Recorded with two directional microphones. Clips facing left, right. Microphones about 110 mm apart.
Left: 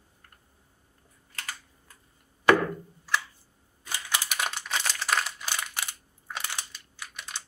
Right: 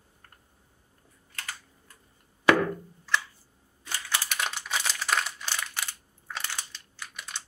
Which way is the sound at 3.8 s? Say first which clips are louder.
Even; 10° left (ahead or behind).